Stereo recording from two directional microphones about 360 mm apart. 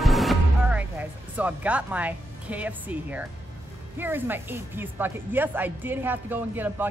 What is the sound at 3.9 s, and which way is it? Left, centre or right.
Speech, centre.